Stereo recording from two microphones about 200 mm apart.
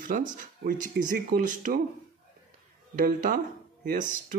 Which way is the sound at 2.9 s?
45° right (ahead or behind).